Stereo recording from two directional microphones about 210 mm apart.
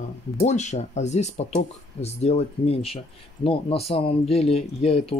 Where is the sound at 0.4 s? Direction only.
35° left (ahead or behind).